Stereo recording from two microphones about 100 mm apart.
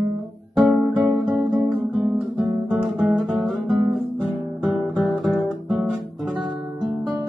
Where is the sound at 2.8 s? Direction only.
Centre (ahead or behind).